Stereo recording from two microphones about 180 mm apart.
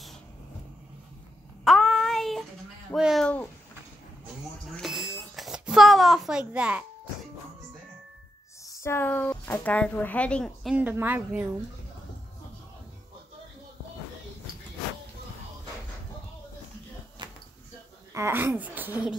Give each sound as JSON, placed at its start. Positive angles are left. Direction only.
{"t": 1.6, "sound": "child singing", "side_deg": 0}
{"t": 2.9, "sound": "speech", "side_deg": 0}
{"t": 4.6, "sound": "a sound", "side_deg": 0}
{"t": 8.6, "sound": "speech", "side_deg": 15}
{"t": 10.8, "sound": "speech", "side_deg": -10}
{"t": 17.2, "sound": "a sound", "side_deg": -25}
{"t": 18.1, "sound": "speech", "side_deg": -15}